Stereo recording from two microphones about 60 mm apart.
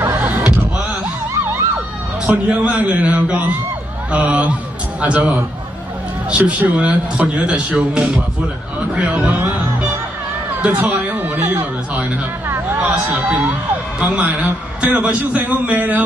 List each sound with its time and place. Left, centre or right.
2.2 s speech: right
10.6 s chatter: right
12.8 s speech: right